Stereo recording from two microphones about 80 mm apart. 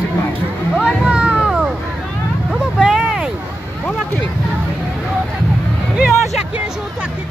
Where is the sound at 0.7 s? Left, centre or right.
Centre.